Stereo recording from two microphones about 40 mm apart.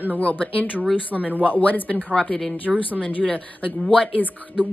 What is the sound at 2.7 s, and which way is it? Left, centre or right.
Speech, centre.